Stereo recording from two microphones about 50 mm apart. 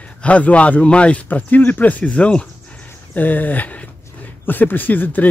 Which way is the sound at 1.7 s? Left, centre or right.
Left.